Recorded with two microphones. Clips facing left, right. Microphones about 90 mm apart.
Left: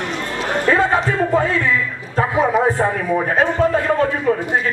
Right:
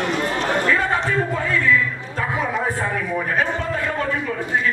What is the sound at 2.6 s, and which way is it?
A man's voice, 30° left (ahead or behind).